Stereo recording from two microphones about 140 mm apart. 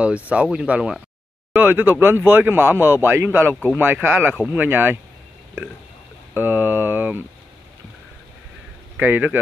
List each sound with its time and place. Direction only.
0.3 s speech: 10° right (ahead or behind)
6.3 s speech: 15° right (ahead or behind)
8.9 s speech: 15° right (ahead or behind)